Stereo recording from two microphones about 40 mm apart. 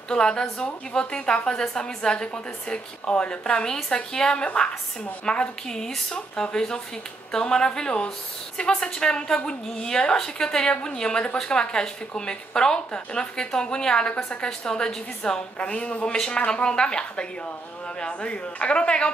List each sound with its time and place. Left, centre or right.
0.1 s a woman's voice: left
5.8 s speech: centre
6.1 s a woman's voice: left